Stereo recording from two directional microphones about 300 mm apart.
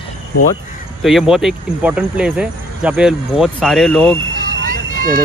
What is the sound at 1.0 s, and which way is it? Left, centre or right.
Speech, centre.